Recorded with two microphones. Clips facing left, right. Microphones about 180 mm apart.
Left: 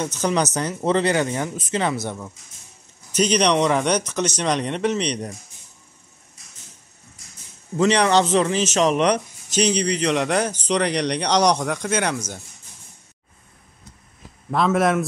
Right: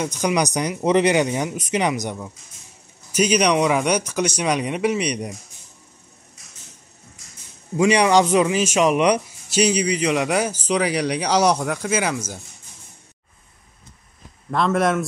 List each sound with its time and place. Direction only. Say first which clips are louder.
0.0 s a man's voice: right 1 dB; 10° right (ahead or behind)
7.7 s a man's voice: right 1 dB; 10° right (ahead or behind)
14.5 s a man's voice: left 1 dB; centre (ahead or behind)